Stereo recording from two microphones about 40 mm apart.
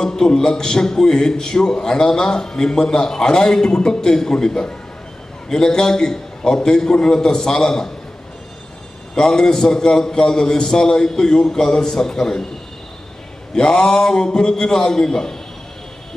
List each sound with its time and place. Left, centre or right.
0.0 s a man's voice: centre
9.1 s a man's voice: centre
13.6 s a man's voice: centre